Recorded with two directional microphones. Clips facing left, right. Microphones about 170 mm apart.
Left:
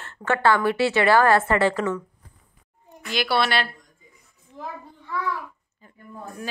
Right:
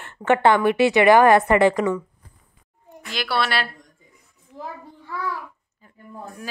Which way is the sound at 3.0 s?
Centre (ahead or behind).